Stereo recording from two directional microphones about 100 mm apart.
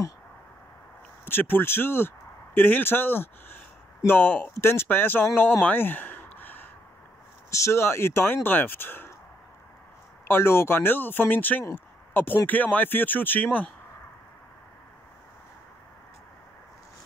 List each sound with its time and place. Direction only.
1.2 s speech: 20° left (ahead or behind)
10.2 s speech: 25° left (ahead or behind)